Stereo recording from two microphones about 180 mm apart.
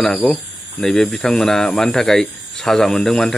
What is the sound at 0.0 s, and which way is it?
Speech, centre (ahead or behind).